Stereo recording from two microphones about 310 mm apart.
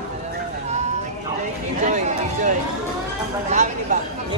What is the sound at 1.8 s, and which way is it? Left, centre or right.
Run, right.